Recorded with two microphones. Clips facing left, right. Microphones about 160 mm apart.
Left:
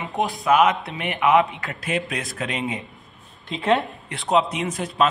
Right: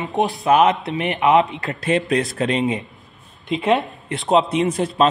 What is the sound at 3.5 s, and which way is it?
A man's voice, 15° right (ahead or behind).